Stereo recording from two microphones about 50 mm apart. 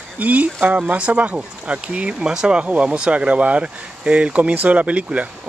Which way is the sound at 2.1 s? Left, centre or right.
Centre.